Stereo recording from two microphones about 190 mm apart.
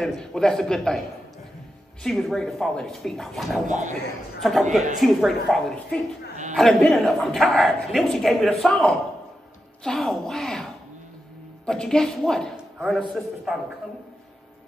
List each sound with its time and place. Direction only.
0.0 s a man's voice: centre (ahead or behind)
2.0 s a man's voice: centre (ahead or behind)
3.6 s speech: 40° right (ahead or behind)
4.4 s a man's voice: centre (ahead or behind)